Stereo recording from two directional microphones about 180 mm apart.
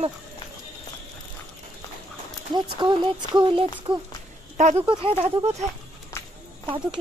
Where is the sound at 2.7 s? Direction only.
30° right (ahead or behind).